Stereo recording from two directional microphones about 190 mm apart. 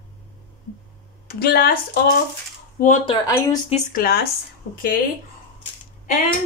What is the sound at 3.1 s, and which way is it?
Speech, 15° left (ahead or behind).